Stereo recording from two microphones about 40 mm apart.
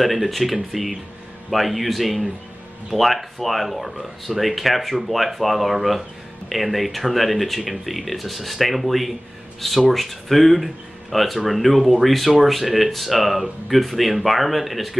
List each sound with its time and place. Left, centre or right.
0.0 s speech: centre